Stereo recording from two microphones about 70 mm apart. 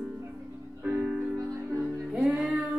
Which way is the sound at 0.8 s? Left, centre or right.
Centre.